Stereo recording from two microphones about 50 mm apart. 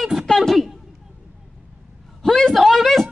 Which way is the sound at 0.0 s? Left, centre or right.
Centre.